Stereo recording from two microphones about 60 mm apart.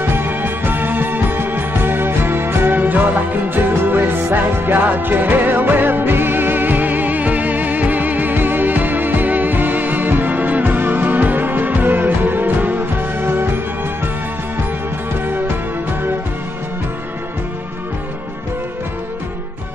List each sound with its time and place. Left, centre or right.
0.0 s music: right